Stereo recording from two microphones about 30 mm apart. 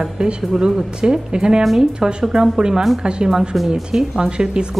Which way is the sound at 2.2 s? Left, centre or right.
Centre.